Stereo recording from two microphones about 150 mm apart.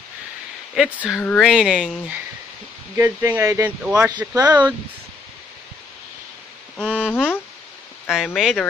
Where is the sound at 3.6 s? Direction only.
10° right (ahead or behind).